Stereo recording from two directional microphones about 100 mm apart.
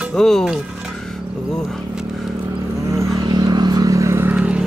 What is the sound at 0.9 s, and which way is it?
Vehicle, 5° left (ahead or behind).